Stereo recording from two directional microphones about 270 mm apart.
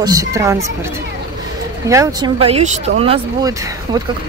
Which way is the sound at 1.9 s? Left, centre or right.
Centre.